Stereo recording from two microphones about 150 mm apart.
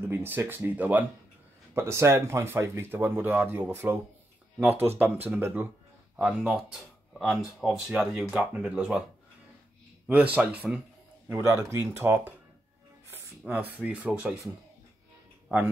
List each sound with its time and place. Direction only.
0.1 s speech: 15° right (ahead or behind)
10.3 s speech: 10° right (ahead or behind)
13.5 s speech: 10° right (ahead or behind)
15.4 s music: 10° right (ahead or behind)